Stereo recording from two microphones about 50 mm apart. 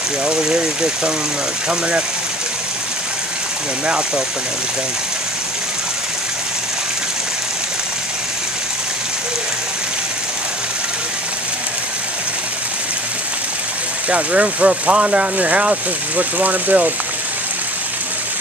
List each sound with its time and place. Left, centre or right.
0.2 s speech: centre
14.0 s speech: right